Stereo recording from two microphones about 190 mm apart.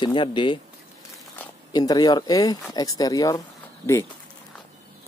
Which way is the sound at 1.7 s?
20° left (ahead or behind).